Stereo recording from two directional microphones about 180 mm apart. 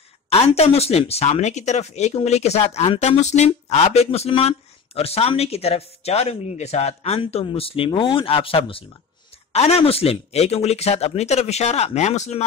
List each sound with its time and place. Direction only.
0.3 s speech: 35° left (ahead or behind)